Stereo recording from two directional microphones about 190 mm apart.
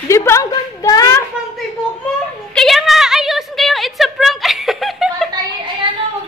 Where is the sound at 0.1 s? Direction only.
15° left (ahead or behind).